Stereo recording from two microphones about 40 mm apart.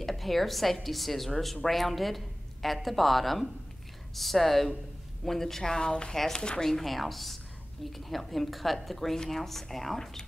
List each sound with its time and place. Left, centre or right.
0.0 s a woman's voice: centre; by 6.6 s left
6.6 s a woman's voice: centre